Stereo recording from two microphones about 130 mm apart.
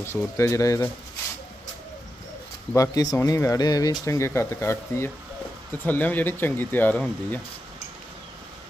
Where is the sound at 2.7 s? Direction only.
25° left (ahead or behind).